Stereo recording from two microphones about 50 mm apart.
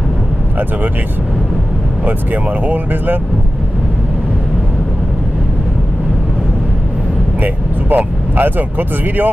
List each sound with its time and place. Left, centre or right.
2.0 s speech: right
7.4 s speech: right